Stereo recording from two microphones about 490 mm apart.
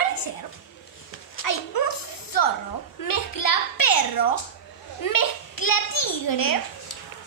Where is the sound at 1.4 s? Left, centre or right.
Left.